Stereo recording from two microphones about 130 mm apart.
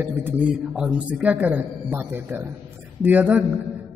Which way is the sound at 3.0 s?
15° right (ahead or behind).